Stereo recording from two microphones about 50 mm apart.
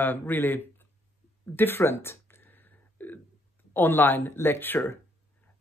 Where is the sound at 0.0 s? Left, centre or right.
Left.